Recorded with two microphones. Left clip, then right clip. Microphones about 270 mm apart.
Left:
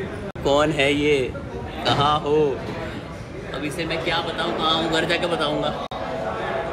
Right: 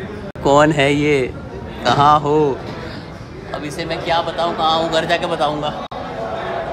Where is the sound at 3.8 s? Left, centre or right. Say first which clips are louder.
Right 6 dB; right.